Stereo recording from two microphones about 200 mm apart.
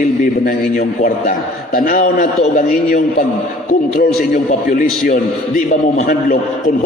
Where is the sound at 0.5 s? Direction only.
45° left (ahead or behind).